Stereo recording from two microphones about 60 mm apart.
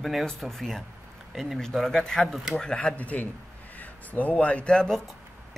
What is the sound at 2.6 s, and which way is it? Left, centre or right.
Speech, centre.